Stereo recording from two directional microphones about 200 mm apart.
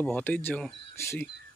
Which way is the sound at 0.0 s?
10° left (ahead or behind).